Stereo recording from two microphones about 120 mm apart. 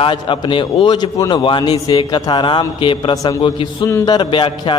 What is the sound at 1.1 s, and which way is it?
A man's voice, 30° left (ahead or behind).